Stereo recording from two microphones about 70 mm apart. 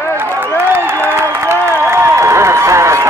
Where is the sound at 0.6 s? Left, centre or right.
Right.